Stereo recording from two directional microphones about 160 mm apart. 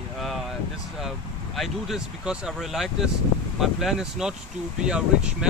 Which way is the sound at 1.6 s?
Centre (ahead or behind).